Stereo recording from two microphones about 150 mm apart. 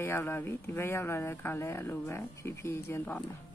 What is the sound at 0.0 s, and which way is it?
Speech, 15° left (ahead or behind).